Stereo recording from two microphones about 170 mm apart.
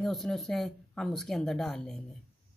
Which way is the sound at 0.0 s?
Centre (ahead or behind).